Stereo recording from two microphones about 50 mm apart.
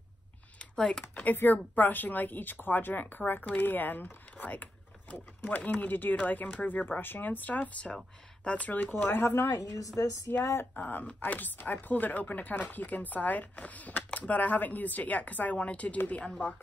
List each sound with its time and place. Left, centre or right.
0.6 s computer keyboard: centre
1.3 s a woman's voice: left
9.0 s speech: left
9.9 s speech: left
10.4 s speech: left
10.8 s a woman's voice: left